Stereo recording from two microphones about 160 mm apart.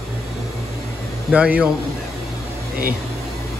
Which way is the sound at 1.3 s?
10° right (ahead or behind).